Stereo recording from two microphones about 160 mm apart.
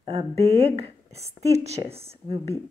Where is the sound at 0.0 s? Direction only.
30° right (ahead or behind).